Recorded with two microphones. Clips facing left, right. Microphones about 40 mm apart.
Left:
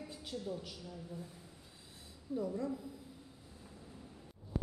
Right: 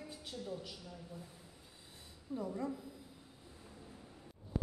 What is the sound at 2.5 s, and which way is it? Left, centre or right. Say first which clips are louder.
Speech: left 2 dB; centre.